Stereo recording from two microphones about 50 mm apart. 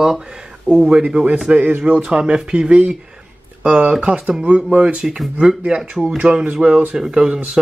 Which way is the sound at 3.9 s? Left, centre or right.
Centre.